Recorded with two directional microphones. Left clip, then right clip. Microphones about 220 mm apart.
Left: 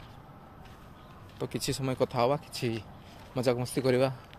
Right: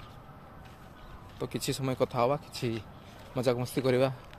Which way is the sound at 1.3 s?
Centre (ahead or behind).